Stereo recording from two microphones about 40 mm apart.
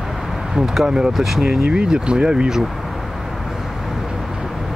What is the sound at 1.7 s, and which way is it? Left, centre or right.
Speech, right.